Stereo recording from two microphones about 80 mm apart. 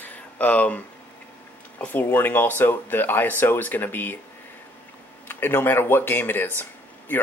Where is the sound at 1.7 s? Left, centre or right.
Left.